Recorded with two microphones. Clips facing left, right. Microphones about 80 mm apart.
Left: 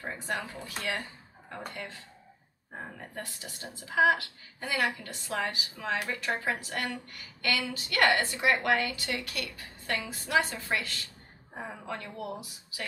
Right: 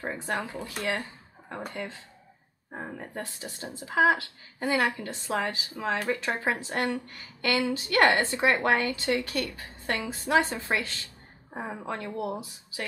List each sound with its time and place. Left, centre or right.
0.0 s speech: right
0.5 s speech: centre
1.7 s a woman's voice: right